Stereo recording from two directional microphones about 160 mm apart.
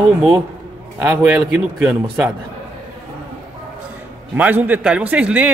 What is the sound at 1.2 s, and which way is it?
A man's voice, 5° right (ahead or behind).